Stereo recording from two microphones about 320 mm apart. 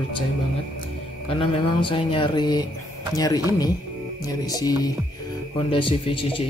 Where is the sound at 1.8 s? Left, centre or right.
Centre.